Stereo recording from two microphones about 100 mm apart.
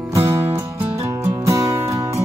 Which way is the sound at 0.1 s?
30° right (ahead or behind).